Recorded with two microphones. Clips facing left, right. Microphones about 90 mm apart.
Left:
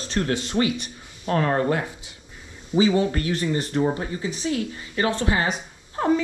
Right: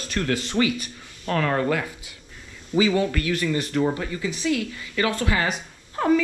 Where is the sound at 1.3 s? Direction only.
25° left (ahead or behind).